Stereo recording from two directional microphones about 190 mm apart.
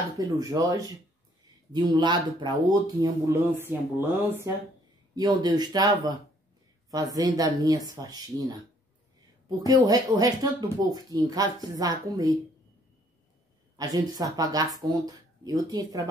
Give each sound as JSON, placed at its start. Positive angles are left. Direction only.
{"t": 0.2, "sound": "speech", "side_deg": -20}
{"t": 7.2, "sound": "speech", "side_deg": -20}
{"t": 9.6, "sound": "speech", "side_deg": -20}
{"t": 13.7, "sound": "speech", "side_deg": -20}